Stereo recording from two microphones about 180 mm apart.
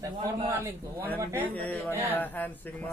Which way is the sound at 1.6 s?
10° left (ahead or behind).